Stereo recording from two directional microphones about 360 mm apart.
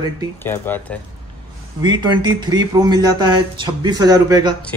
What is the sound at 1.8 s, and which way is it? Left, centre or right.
Speech, centre.